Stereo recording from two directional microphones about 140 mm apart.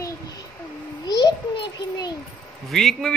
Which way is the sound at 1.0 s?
30° left (ahead or behind).